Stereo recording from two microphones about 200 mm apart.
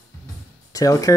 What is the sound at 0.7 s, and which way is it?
Speech, 15° left (ahead or behind).